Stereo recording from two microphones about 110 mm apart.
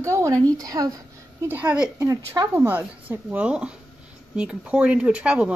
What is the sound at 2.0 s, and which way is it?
Speech, 35° right (ahead or behind).